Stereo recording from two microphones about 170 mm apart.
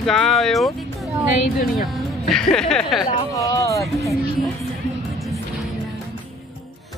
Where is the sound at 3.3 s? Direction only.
20° left (ahead or behind).